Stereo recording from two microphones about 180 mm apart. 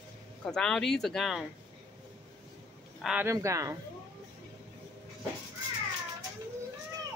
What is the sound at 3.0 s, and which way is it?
Speech, 5° right (ahead or behind).